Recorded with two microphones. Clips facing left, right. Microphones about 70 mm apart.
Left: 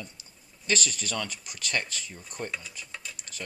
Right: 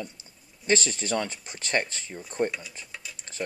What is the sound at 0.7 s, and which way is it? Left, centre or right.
Speech, right.